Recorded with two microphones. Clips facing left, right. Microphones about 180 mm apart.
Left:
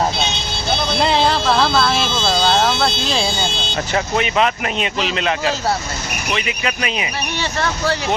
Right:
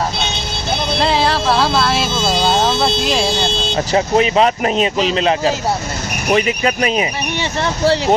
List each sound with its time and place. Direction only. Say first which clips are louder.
0.9 s vehicle: right 1 dB; centre (ahead or behind)
3.7 s speech: right 6 dB; 30° right (ahead or behind)
7.6 s speech: right 6 dB; 30° right (ahead or behind)